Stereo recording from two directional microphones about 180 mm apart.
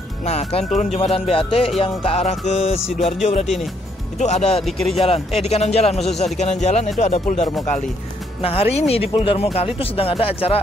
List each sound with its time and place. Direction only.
0.2 s speech: 35° left (ahead or behind)
4.6 s speech: centre (ahead or behind)
4.9 s speech: 35° left (ahead or behind)